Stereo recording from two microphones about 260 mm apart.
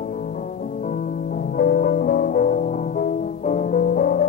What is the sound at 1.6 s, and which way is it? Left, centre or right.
Music, left.